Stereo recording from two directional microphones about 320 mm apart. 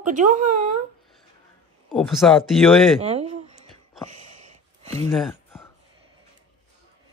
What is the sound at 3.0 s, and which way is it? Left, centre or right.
Speech, centre.